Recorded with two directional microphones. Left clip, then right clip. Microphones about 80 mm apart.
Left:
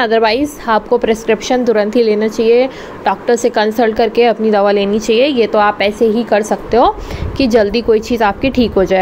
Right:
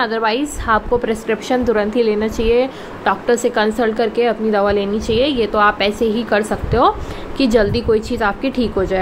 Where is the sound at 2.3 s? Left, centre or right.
Left.